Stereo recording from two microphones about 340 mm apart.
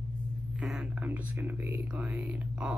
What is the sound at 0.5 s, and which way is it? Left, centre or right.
Speech, centre.